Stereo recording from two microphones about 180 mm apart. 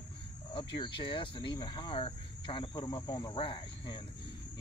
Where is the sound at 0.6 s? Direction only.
25° left (ahead or behind).